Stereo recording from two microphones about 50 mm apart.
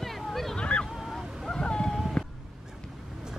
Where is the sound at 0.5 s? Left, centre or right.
Left.